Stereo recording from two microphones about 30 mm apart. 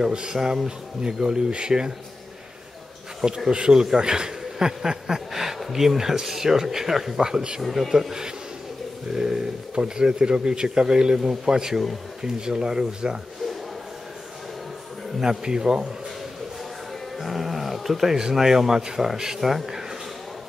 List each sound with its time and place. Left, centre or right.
0.0 s a man's voice: right
0.7 s a man's voice: right
3.3 s a man's voice: centre
5.3 s speech: centre
7.2 s a man's voice: right
7.6 s speech: centre
9.1 s a man's voice: centre
15.4 s a man's voice: right
17.2 s speech: centre